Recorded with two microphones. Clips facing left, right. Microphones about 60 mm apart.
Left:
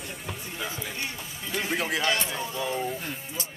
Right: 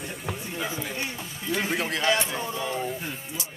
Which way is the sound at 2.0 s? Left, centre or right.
Right.